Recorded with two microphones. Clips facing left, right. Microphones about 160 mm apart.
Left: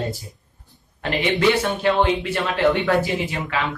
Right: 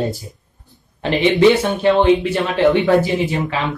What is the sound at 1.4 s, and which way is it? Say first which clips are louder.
Speech: right 6 dB; 20° right (ahead or behind).